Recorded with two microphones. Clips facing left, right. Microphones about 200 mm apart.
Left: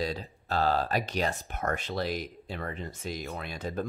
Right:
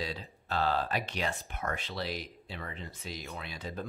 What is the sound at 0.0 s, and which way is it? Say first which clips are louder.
Speech: left 6 dB; 40° left (ahead or behind).